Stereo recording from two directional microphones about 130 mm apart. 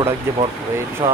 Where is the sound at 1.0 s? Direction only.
20° right (ahead or behind).